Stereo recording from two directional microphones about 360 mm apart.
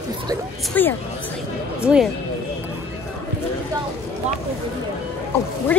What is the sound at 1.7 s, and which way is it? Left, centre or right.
Speech, centre.